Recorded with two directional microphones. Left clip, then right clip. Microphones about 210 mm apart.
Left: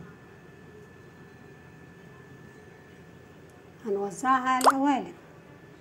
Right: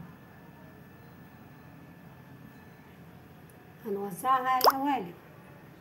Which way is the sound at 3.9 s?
15° left (ahead or behind).